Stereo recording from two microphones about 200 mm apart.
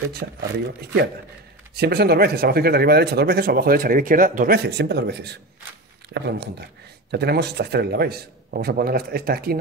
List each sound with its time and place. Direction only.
0.1 s speech: 50° right (ahead or behind)
1.8 s speech: 50° right (ahead or behind)